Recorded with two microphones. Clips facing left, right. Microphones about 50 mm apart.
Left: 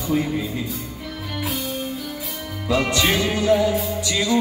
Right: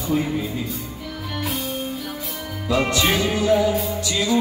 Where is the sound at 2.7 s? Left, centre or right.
Centre.